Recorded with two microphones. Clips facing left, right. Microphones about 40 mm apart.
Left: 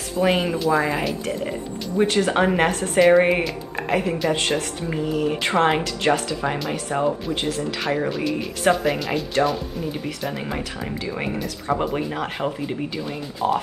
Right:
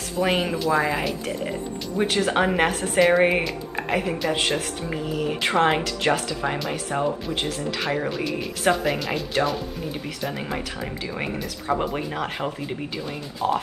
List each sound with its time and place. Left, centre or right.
0.2 s speech: centre